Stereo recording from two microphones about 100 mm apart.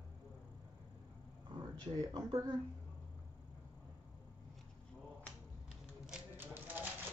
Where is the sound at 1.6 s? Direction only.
40° right (ahead or behind).